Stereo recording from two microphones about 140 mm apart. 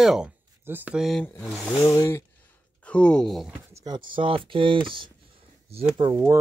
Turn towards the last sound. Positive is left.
turn(degrees=-35)  # may be behind; listen again after turning